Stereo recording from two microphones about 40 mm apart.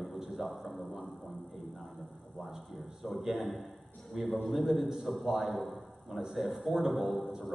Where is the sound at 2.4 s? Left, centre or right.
Centre.